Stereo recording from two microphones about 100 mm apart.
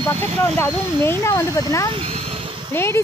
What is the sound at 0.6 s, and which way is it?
Speech, 25° left (ahead or behind).